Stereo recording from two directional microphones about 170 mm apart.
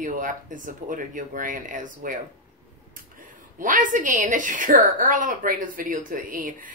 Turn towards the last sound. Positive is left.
turn(degrees=-55)  # may be behind; listen again after turning